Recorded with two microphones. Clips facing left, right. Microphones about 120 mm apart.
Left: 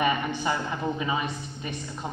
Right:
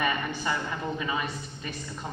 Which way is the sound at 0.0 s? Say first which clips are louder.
Left 3 dB; 20° left (ahead or behind).